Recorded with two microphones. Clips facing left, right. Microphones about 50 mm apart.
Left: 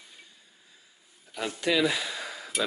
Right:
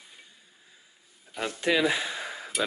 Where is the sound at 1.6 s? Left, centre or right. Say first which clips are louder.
Right 1 dB; right.